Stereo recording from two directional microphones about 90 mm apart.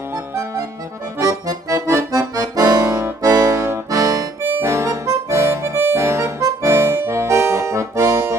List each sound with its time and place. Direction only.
1.2 s accordion: 35° right (ahead or behind)
4.4 s accordion: 25° right (ahead or behind)